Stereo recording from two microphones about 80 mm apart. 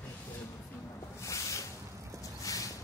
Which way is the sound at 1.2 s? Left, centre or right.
Left.